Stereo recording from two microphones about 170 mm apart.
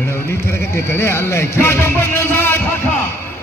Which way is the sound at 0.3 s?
15° left (ahead or behind).